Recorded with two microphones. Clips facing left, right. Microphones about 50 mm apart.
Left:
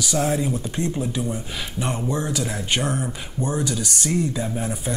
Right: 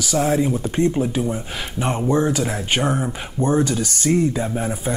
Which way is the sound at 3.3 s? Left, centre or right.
Right.